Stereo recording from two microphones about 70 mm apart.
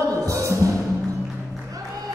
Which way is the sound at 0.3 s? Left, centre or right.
Right.